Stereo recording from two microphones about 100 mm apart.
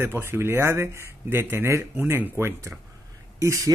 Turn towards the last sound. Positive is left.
turn(degrees=-35)  # may be behind; listen again after turning